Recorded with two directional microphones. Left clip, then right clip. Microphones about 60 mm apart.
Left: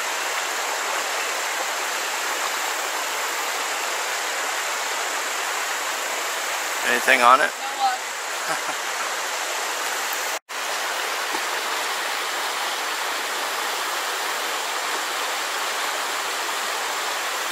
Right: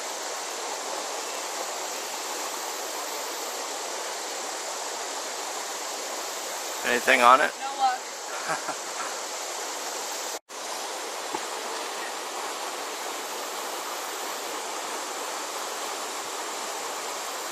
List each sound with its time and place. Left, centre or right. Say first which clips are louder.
6.9 s speech: left 2 dB; centre